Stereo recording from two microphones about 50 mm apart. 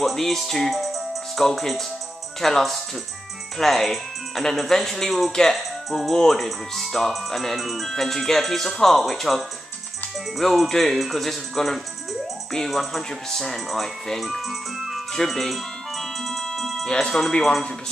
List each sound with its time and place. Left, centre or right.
0.0 s speech: centre
16.8 s speech: centre